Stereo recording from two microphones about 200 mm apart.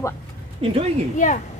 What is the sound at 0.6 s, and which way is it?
Speech, 30° right (ahead or behind).